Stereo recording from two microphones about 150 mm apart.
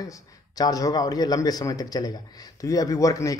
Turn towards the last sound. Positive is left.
turn(degrees=20)  # may be behind; listen again after turning